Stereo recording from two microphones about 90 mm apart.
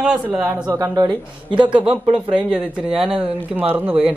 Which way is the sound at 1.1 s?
60° right (ahead or behind).